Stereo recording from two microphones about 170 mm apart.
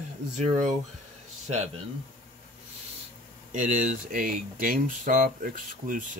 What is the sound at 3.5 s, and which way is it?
Speech, 50° right (ahead or behind).